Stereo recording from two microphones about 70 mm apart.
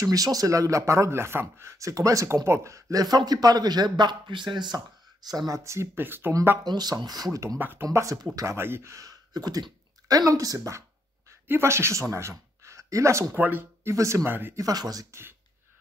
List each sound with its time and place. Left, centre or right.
0.0 s speech: right
2.2 s speech: right
5.6 s speech: right
5.9 s speech: right
6.6 s speech: right
7.5 s speech: right
8.0 s speech: right
8.5 s speech: right
8.9 s speech: right
11.4 s speech: right
13.3 s speech: right
13.8 s speech: right
14.5 s speech: right
15.0 s speech: right